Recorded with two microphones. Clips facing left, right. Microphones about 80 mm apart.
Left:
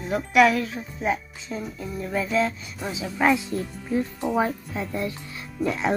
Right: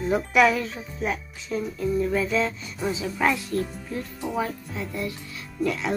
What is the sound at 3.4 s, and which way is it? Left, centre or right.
A child's voice, left.